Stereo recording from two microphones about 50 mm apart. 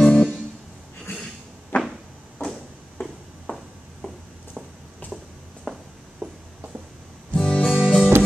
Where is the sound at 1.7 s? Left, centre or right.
Left.